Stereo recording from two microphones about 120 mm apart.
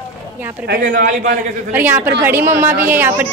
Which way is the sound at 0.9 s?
90° right.